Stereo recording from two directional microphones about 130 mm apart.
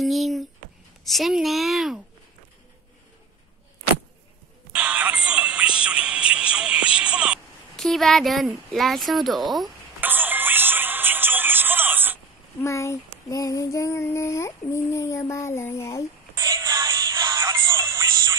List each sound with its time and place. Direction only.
0.0 s speech: centre (ahead or behind)
4.7 s music: 10° right (ahead or behind)
7.0 s a sound: 10° right (ahead or behind)
7.7 s speech: centre (ahead or behind)
9.9 s music: 15° right (ahead or behind)
12.6 s child singing: 25° left (ahead or behind)
16.5 s music: 20° right (ahead or behind)